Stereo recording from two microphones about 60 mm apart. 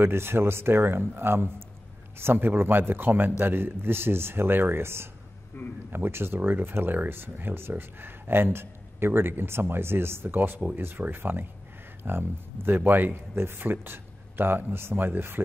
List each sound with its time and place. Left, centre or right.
0.0 s speech: right